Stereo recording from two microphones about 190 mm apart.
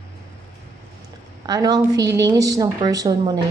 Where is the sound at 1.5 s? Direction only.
20° right (ahead or behind).